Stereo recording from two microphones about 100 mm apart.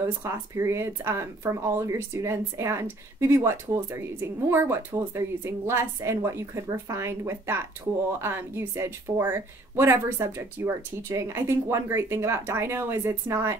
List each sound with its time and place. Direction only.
0.0 s speech: 25° right (ahead or behind)